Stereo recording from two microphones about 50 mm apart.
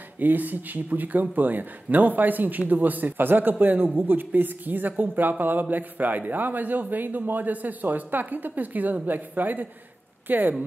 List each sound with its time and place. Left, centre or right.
0.2 s speech: right